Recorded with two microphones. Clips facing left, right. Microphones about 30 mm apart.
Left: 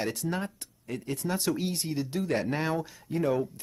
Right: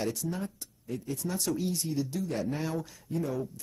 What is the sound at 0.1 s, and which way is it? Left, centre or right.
Speech, left.